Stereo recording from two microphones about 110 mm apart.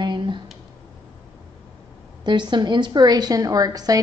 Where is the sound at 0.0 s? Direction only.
45° right (ahead or behind).